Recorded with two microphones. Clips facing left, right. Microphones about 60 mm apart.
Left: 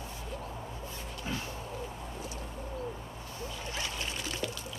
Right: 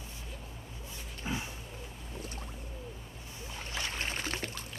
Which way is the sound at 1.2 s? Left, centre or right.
Centre.